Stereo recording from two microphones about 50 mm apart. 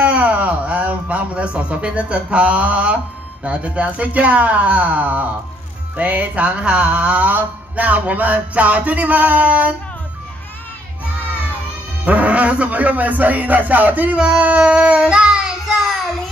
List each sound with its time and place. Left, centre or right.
0.0 s speech: right
3.4 s music: right
12.0 s speech: right
14.1 s music: right